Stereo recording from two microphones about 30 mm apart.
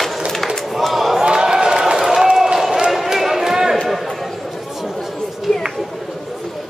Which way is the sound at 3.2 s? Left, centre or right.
Centre.